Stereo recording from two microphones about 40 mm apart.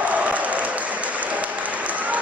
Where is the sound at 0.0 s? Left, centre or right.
Right.